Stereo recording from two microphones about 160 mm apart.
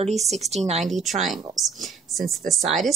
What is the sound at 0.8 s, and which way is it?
Speech, centre (ahead or behind).